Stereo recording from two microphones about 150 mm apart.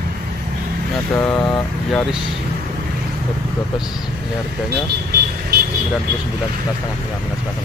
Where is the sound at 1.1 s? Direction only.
5° left (ahead or behind).